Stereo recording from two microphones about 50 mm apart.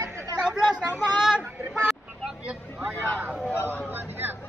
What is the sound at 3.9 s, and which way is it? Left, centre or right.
Speech, right.